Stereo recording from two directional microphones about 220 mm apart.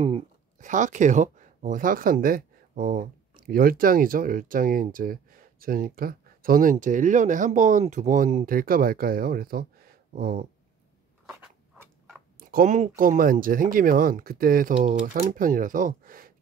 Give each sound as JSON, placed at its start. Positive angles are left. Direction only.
{"t": 0.0, "sound": "speech", "side_deg": -30}
{"t": 12.4, "sound": "speech", "side_deg": -40}